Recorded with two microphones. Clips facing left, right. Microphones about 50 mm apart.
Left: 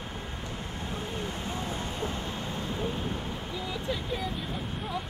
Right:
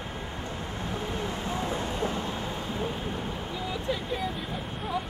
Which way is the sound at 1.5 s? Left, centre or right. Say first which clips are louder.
Right 4 dB; right.